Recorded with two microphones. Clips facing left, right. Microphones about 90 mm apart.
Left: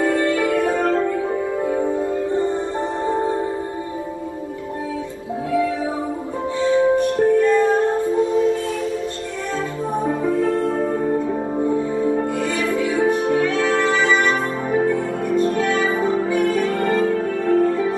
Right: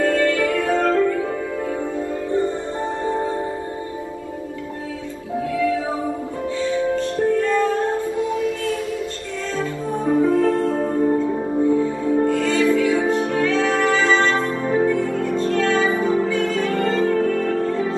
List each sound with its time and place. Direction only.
0.0 s music: 20° left (ahead or behind)
6.6 s music: 20° left (ahead or behind)
9.6 s music: 20° left (ahead or behind)